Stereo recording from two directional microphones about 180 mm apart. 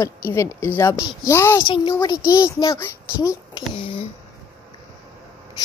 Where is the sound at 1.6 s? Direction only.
30° left (ahead or behind).